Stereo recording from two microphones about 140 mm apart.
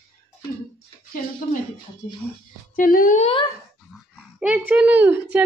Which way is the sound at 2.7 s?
85° left.